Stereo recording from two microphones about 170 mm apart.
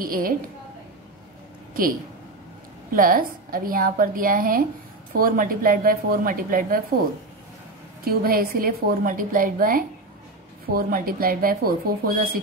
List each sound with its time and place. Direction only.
0.0 s a woman's voice: 55° right (ahead or behind)
2.9 s a woman's voice: 55° right (ahead or behind)
8.0 s a woman's voice: 60° right (ahead or behind)